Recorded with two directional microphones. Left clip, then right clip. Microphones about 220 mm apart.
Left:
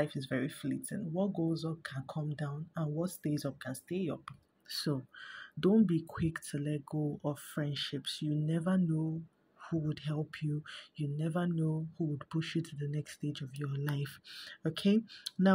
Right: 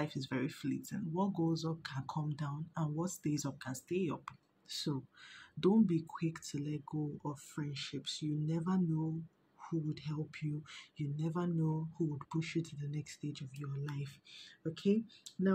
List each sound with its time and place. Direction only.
0.0 s speech: 10° left (ahead or behind)
4.6 s speech: 25° left (ahead or behind); by 15.5 s 40° left (ahead or behind)